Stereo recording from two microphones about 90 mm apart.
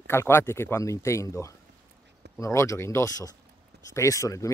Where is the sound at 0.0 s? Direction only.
25° left (ahead or behind).